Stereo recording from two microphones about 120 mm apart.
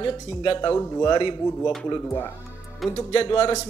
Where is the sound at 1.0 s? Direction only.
45° left (ahead or behind).